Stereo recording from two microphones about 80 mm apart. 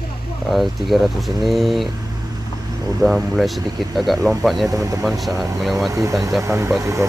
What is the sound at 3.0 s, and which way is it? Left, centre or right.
Speech, centre.